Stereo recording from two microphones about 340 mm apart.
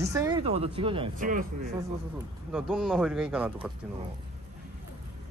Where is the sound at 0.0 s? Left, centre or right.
Centre.